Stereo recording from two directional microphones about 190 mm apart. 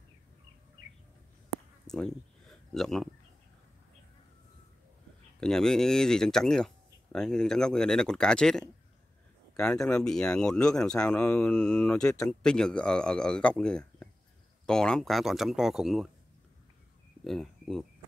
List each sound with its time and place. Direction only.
1.9 s a sound: centre (ahead or behind)
5.4 s speech: 5° left (ahead or behind)
17.2 s speech: centre (ahead or behind)